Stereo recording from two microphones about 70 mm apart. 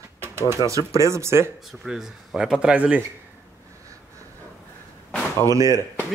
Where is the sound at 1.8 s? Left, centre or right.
Centre.